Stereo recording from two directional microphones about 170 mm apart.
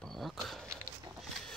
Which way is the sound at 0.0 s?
Centre (ahead or behind).